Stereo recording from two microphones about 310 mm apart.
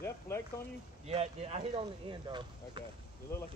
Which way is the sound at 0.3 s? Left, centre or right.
Centre.